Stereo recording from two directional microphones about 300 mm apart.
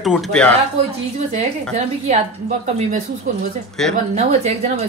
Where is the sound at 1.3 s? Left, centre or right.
Right.